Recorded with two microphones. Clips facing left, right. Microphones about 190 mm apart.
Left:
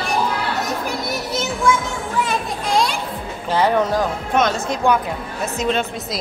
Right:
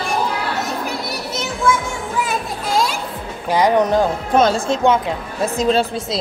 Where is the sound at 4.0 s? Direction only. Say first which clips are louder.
Right 4 dB; 30° right (ahead or behind).